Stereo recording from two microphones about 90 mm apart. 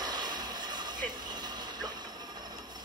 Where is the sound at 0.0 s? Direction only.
50° right (ahead or behind).